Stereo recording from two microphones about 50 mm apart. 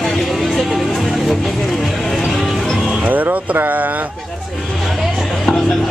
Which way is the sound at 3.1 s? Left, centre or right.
Right.